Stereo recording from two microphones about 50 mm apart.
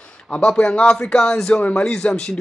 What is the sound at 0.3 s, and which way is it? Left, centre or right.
Speech, left.